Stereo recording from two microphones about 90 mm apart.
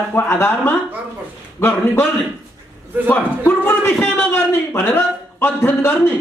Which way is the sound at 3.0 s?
25° left (ahead or behind).